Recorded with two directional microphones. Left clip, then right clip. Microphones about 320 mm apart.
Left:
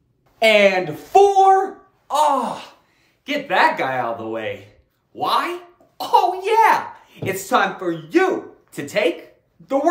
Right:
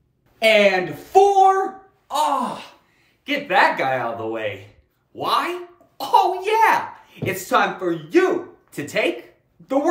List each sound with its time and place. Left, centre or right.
0.4 s speech: left
3.3 s speech: centre